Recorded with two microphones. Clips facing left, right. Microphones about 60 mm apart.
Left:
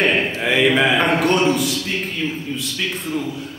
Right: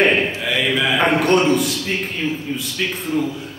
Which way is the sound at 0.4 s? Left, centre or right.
Left.